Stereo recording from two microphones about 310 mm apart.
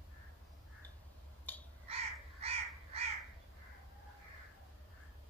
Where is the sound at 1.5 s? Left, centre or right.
Centre.